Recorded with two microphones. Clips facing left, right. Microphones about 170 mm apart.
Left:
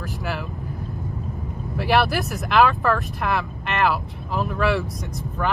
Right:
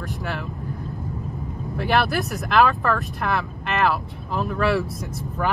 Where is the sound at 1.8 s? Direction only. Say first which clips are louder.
Left 1 dB; centre (ahead or behind).